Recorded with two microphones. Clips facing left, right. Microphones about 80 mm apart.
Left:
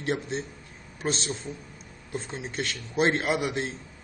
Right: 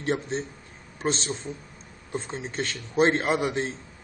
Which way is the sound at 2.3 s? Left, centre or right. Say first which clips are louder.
Right 1 dB; centre.